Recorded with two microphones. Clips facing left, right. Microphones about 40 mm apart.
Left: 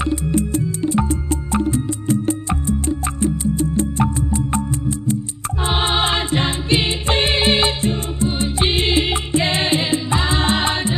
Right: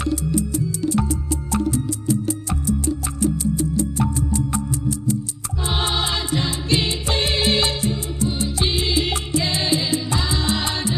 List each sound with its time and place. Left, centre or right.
0.0 s music: left
0.3 s music: left
0.8 s music: left
9.0 s music: left
9.4 s music: left